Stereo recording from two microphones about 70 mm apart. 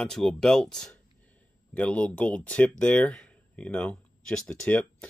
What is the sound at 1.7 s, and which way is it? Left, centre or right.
Speech, centre.